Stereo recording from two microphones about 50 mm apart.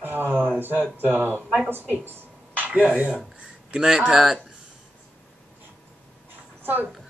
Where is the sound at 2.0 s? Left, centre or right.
Right.